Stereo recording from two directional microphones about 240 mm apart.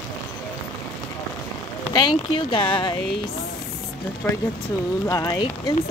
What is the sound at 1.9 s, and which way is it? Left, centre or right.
Speech, centre.